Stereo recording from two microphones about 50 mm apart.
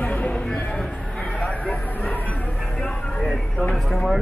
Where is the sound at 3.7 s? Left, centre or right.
Centre.